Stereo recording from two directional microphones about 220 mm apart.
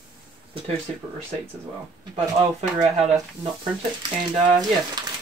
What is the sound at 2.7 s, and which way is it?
Speech, 25° right (ahead or behind).